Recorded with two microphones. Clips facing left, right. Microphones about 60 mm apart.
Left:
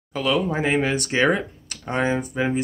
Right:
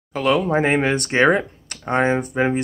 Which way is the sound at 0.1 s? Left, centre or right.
Right.